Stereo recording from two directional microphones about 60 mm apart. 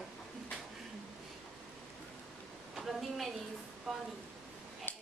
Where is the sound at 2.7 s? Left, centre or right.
Centre.